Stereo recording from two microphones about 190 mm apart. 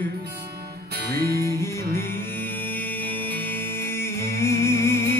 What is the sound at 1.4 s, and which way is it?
Music, 15° left (ahead or behind).